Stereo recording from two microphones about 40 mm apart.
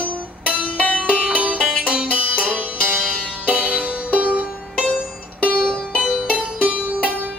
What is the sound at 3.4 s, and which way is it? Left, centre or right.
Music, right.